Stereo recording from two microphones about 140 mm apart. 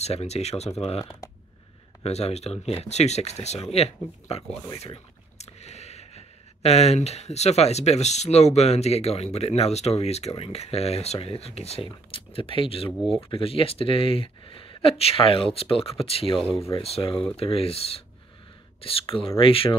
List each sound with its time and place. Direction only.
0.0 s speech: 50° left (ahead or behind)
2.0 s speech: 50° left (ahead or behind)